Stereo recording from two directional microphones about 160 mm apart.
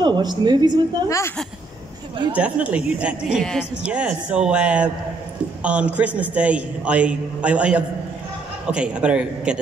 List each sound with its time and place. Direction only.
0.0 s a woman's voice: 25° right (ahead or behind)
1.0 s a woman's voice: 20° left (ahead or behind)
2.3 s a man's voice: 10° right (ahead or behind)